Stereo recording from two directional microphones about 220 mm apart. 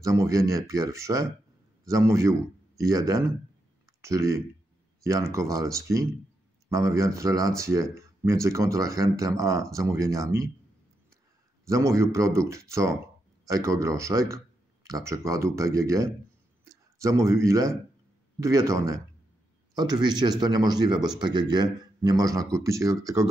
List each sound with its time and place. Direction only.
0.0 s speech: 15° right (ahead or behind)
11.6 s speech: 15° right (ahead or behind)